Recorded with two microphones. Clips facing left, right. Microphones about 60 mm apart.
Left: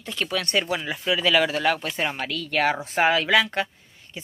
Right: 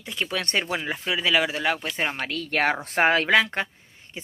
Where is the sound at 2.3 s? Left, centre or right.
Right.